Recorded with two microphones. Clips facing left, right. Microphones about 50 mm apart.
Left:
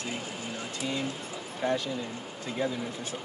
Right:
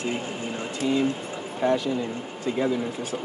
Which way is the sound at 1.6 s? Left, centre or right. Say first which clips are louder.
Right 6 dB; centre.